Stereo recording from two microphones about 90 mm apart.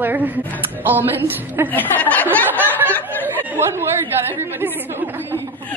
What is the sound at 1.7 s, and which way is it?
Speech, 20° left (ahead or behind).